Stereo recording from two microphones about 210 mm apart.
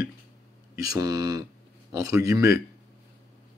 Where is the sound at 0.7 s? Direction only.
15° right (ahead or behind).